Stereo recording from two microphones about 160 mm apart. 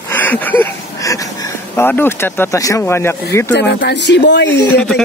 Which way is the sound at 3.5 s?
90° left.